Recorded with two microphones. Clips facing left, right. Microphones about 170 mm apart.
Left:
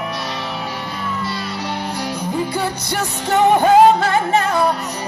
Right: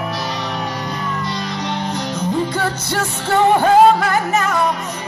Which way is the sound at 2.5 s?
15° left (ahead or behind).